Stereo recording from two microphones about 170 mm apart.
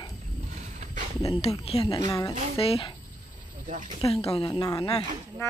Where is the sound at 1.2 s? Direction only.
35° left (ahead or behind).